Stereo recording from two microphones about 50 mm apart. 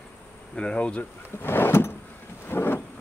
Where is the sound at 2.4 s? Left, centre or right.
Left.